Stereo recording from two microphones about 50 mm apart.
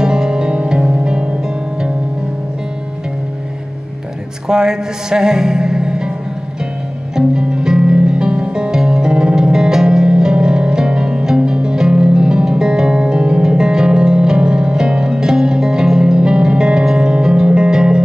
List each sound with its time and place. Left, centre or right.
0.0 s music: centre
4.5 s music: centre
7.2 s music: centre